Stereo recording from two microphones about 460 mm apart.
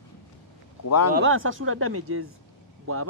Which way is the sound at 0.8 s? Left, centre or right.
Left.